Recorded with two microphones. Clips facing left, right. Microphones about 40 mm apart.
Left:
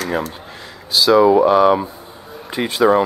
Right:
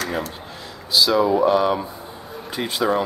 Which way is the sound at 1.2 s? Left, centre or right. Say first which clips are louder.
Left 8 dB; left.